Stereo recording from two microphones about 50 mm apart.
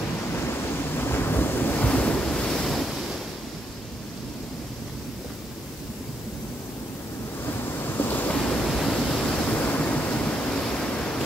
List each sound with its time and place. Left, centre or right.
0.3 s waves: left
2.0 s waves: left
2.7 s waves: centre
7.8 s ocean: left
8.4 s pink noise: centre
9.3 s waves: left
10.6 s a sound: centre